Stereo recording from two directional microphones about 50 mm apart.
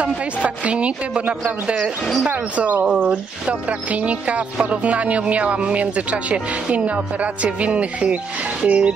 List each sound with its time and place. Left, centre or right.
0.0 s speech: right